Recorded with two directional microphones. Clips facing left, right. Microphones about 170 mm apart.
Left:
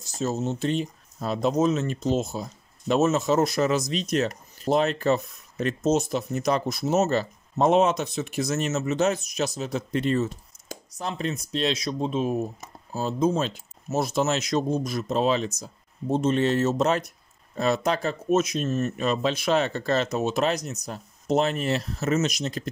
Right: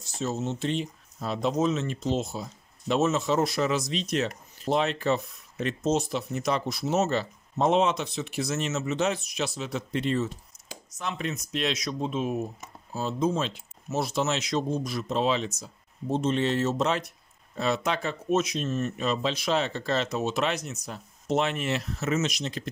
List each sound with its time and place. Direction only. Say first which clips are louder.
0.0 s speech: left 3 dB; 40° left (ahead or behind)